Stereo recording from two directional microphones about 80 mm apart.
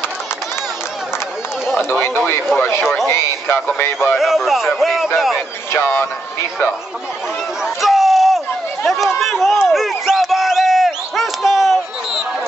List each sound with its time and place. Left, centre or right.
1.9 s speech: left
4.2 s speech: centre
5.7 s a man's voice: left
7.6 s a sound: centre
8.8 s speech: centre
9.7 s a sound: centre